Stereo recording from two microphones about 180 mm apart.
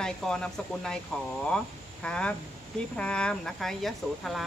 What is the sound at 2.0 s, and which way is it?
Speech, 5° left (ahead or behind).